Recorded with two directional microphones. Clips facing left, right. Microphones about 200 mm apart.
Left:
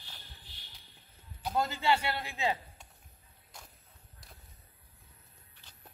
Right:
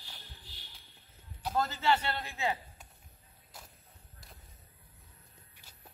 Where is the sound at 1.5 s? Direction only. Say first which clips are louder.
Even; 15° left (ahead or behind).